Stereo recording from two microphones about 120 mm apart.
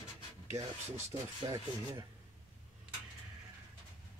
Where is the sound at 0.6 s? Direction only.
30° right (ahead or behind).